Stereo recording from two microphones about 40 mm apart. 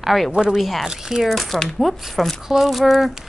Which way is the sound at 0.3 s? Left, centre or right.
Right.